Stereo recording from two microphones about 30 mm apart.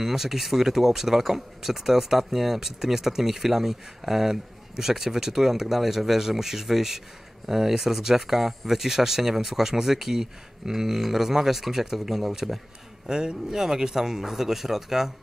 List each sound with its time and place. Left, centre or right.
0.0 s speech: centre